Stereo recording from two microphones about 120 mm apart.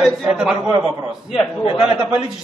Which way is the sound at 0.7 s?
30° right (ahead or behind).